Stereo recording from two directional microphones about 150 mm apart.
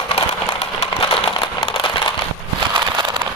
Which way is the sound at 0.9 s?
35° left (ahead or behind).